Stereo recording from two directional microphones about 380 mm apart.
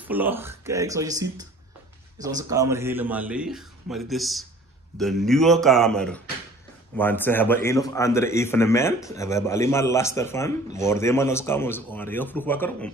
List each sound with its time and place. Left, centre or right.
0.0 s a man's voice: centre